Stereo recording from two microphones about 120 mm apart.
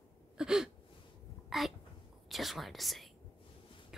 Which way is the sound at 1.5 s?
Centre (ahead or behind).